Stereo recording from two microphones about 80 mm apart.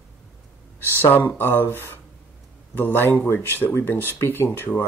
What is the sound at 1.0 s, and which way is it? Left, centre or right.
Speech, left.